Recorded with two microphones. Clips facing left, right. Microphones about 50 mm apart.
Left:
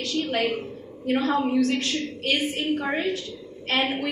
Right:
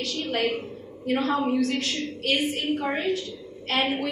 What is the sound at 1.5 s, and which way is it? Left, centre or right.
Speech, left.